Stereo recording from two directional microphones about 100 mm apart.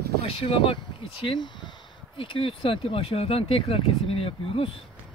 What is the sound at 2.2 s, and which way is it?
Speech, 60° left (ahead or behind).